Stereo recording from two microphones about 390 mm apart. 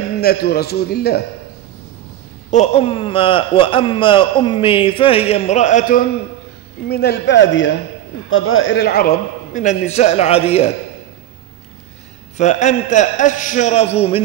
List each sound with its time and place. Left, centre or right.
0.2 s a man's voice: left
2.5 s a man's voice: centre
12.4 s a man's voice: centre